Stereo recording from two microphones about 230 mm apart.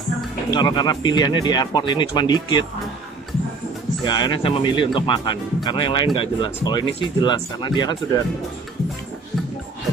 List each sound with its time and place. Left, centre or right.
0.6 s speech: centre
4.0 s speech: centre